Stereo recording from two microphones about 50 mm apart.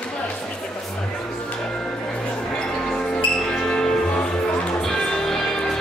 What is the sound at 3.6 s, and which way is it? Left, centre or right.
Music, centre.